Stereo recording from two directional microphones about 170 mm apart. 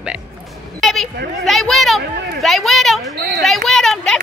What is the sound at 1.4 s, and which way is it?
Speech, centre (ahead or behind).